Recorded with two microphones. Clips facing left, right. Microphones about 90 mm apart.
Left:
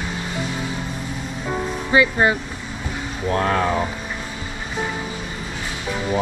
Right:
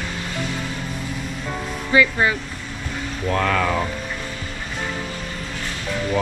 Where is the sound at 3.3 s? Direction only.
30° left (ahead or behind).